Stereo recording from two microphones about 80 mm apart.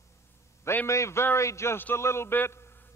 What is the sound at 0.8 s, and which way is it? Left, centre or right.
A man's voice, left.